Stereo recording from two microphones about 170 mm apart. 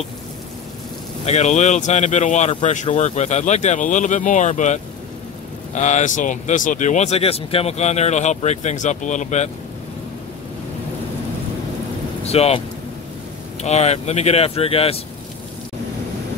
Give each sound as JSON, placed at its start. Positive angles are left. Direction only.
{"t": 1.2, "sound": "speech", "side_deg": 40}
{"t": 5.8, "sound": "speech", "side_deg": 45}
{"t": 12.3, "sound": "speech", "side_deg": 35}